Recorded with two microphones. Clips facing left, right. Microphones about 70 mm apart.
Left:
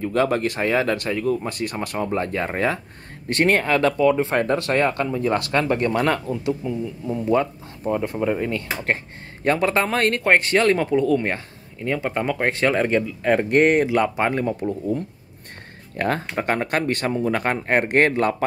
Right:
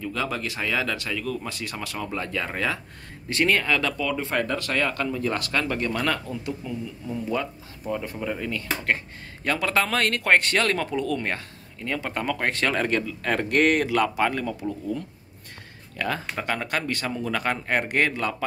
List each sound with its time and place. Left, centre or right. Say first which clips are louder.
0.0 s speech: left 8 dB; left
3.3 s speech: left 4 dB; left